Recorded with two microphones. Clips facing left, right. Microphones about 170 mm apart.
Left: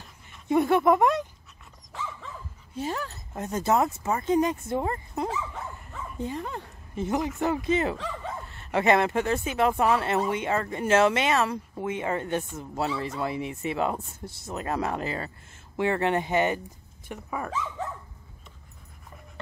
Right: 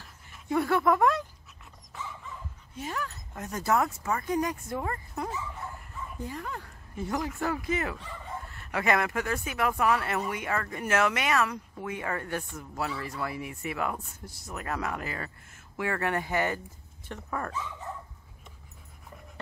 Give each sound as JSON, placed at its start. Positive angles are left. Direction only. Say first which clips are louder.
{"t": 0.0, "sound": "a sound", "louder": "left 2 dB", "side_deg": 20}
{"t": 2.7, "sound": "speech", "louder": "left 4 dB", "side_deg": 30}
{"t": 8.0, "sound": "dog", "louder": "left 6 dB", "side_deg": 90}
{"t": 8.5, "sound": "speech", "louder": "left 5 dB", "side_deg": 25}
{"t": 17.1, "sound": "speech", "louder": "left 1 dB", "side_deg": 10}